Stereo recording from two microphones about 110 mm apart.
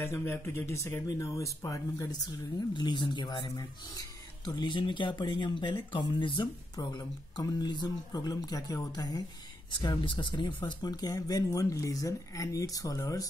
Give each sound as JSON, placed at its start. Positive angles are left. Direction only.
{"t": 0.0, "sound": "speech", "side_deg": 20}
{"t": 9.7, "sound": "speech", "side_deg": 45}